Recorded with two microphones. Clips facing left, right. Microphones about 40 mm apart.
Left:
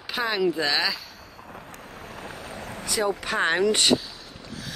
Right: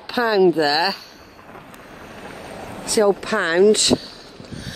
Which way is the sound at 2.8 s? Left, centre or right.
Centre.